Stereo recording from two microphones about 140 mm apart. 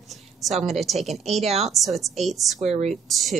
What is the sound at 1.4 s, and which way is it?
Speech, 50° right (ahead or behind).